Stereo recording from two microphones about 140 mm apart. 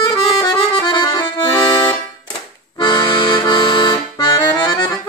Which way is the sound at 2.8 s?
30° left (ahead or behind).